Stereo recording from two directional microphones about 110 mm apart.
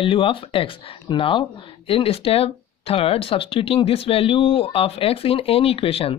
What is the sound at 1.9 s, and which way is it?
Speech, 60° left (ahead or behind).